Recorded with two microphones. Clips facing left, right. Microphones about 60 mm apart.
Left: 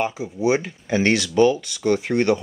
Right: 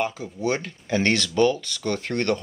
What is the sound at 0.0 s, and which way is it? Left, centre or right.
Speech, centre.